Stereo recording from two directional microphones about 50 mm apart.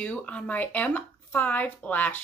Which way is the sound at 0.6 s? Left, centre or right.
Left.